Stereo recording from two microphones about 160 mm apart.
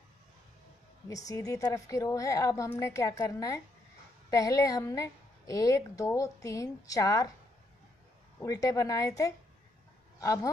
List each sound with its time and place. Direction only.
1.0 s a woman's voice: 20° left (ahead or behind)
8.4 s a woman's voice: 20° left (ahead or behind)